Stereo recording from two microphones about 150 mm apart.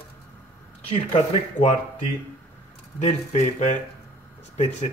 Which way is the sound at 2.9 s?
50° left (ahead or behind).